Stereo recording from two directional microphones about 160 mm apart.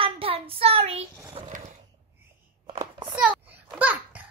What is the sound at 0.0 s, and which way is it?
Child singing, 35° right (ahead or behind).